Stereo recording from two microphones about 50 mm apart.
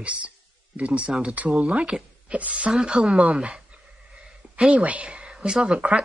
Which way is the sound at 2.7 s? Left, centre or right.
Centre.